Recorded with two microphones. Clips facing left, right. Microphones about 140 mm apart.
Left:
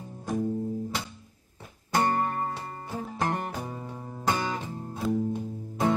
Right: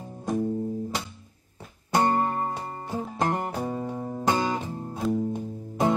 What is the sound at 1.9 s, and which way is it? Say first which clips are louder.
Music: right 3 dB; 20° right (ahead or behind).